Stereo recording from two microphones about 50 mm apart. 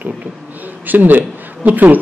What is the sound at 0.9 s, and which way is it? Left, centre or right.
Speech, right.